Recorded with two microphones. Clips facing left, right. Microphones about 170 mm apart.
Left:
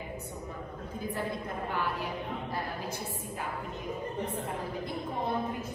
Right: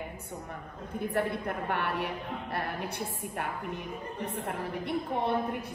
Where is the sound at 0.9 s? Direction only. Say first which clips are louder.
Right 5 dB; 65° right (ahead or behind).